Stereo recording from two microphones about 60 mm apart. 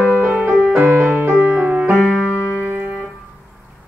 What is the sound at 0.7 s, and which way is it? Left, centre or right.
Music, right.